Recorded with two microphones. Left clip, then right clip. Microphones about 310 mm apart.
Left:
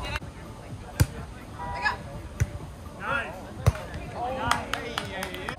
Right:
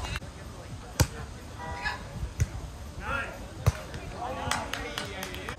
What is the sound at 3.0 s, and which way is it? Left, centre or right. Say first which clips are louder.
Basketball bounce: left 4 dB; centre.